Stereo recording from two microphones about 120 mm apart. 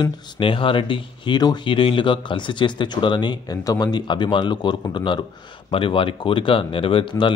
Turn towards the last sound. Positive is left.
turn(degrees=45)  # may be behind; listen again after turning